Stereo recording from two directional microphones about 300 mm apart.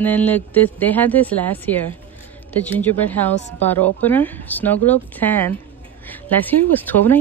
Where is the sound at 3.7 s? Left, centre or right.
Centre.